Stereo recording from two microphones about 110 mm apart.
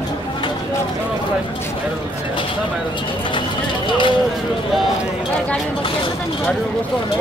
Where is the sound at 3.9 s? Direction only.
45° left (ahead or behind).